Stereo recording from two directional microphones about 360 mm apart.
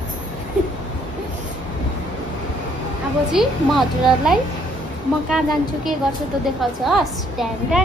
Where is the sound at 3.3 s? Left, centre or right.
Centre.